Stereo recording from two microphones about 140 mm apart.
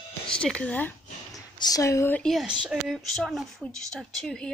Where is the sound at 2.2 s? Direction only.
Centre (ahead or behind).